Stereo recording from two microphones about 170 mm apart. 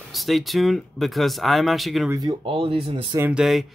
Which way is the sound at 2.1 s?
25° right (ahead or behind).